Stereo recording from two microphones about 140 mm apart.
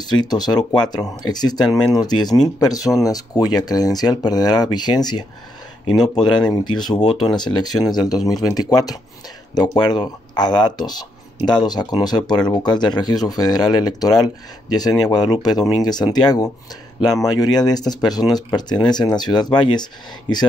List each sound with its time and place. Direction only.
0.0 s speech: 30° left (ahead or behind)
6.2 s speech: 30° left (ahead or behind)